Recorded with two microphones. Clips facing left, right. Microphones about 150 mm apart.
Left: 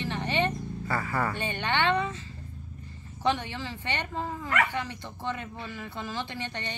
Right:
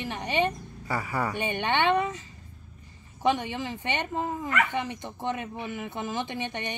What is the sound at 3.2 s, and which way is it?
A woman's voice, 15° right (ahead or behind).